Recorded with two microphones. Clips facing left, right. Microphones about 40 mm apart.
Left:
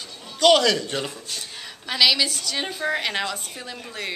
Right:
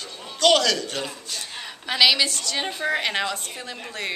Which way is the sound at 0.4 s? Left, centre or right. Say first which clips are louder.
Left 2 dB; centre.